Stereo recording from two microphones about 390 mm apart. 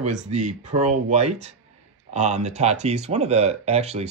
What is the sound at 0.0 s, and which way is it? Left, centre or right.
Speech, centre.